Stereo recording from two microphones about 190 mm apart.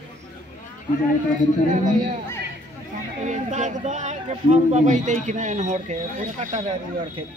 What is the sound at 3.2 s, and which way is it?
Speech, 40° right (ahead or behind).